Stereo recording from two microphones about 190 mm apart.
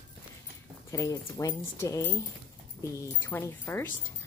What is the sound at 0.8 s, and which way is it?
Speech, 15° left (ahead or behind).